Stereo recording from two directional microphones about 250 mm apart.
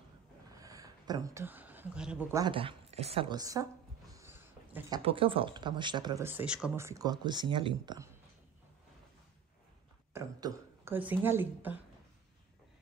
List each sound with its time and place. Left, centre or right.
0.6 s a sound: centre
2.4 s speech: right
10.1 s speech: centre